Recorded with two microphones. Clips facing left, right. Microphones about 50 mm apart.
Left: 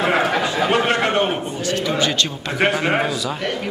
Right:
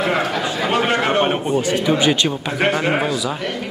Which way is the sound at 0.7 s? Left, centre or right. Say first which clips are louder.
Right 3 dB; centre.